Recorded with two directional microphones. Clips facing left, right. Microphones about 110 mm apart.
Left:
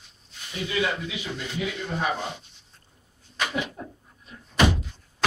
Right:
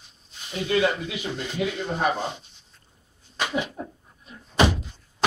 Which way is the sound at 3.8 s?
20° right (ahead or behind).